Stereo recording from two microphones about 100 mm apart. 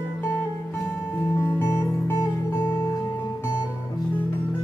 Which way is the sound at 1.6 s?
25° left (ahead or behind).